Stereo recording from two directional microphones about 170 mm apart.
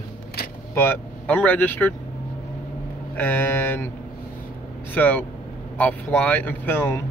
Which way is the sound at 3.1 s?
10° left (ahead or behind).